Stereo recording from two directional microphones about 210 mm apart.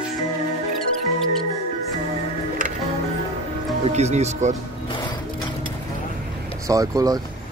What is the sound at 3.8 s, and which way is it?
Speech, 30° right (ahead or behind).